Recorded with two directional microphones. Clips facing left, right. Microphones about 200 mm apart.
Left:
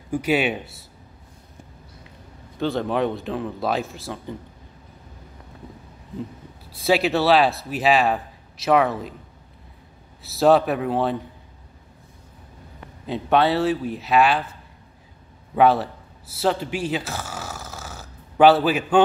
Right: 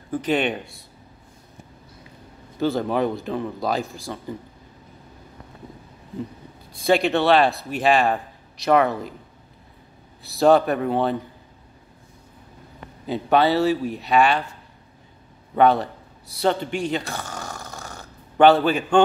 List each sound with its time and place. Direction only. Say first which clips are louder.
0.1 s speech: left 1 dB; 10° left (ahead or behind)
2.6 s speech: right 1 dB; centre (ahead or behind)
6.7 s speech: right 1 dB; 5° left (ahead or behind)
10.2 s speech: even; centre (ahead or behind)
13.0 s speech: right 1 dB; centre (ahead or behind)
15.5 s a man's voice: even; 5° left (ahead or behind)